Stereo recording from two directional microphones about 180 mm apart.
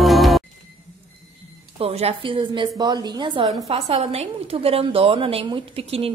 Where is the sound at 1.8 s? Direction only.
35° right (ahead or behind).